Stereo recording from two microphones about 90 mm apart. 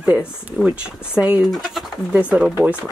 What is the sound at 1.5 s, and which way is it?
Speech, centre (ahead or behind).